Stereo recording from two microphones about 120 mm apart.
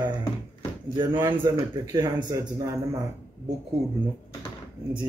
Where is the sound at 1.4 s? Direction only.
35° right (ahead or behind).